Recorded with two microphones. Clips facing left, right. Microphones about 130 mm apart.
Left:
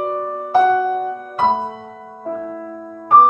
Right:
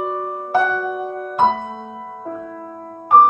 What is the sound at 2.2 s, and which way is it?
Music, centre (ahead or behind).